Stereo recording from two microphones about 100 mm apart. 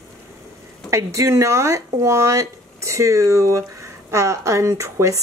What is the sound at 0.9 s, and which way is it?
Speech, 30° right (ahead or behind).